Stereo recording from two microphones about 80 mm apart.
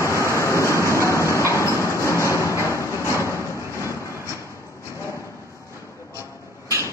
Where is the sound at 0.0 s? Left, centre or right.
Left.